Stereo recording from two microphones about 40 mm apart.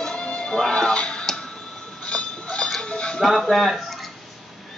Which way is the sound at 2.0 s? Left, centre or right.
Left.